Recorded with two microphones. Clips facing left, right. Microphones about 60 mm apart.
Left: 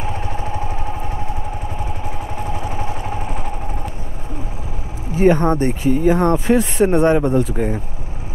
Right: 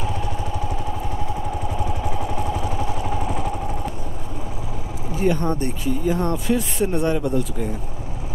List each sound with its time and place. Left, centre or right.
0.0 s vehicle: left
2.0 s vehicle: left
5.1 s speech: left